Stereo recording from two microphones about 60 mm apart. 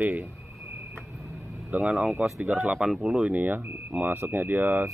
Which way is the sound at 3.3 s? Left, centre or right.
Right.